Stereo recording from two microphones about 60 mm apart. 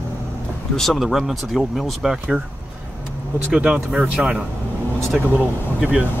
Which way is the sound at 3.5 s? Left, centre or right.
Centre.